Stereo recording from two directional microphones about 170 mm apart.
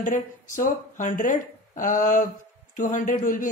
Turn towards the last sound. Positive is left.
turn(degrees=50)  # may be behind; listen again after turning